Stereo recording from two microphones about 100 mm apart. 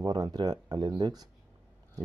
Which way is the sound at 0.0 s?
40° right (ahead or behind).